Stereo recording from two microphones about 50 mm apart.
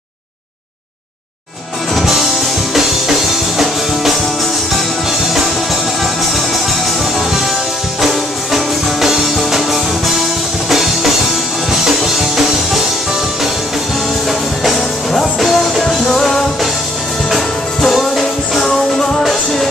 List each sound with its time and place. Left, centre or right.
2.0 s music: centre
3.5 s music: centre
8.0 s music: centre
14.6 s music: centre
17.8 s music: centre
18.6 s music: centre